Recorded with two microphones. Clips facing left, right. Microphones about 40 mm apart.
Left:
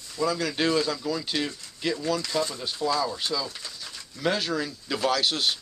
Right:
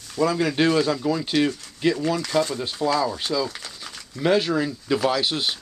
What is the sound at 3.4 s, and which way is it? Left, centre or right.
Speech, right.